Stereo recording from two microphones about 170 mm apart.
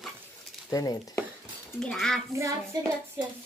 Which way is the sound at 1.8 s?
5° left (ahead or behind).